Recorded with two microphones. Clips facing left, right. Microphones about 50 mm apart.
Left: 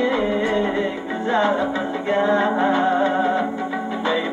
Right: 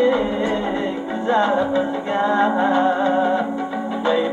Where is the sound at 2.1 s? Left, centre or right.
Left.